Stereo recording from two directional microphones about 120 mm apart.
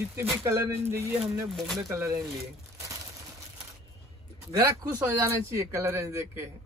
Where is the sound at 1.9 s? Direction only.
25° right (ahead or behind).